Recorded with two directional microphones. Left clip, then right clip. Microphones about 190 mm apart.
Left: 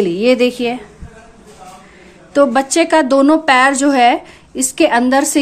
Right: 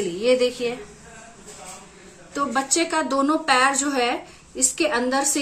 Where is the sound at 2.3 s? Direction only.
45° left (ahead or behind).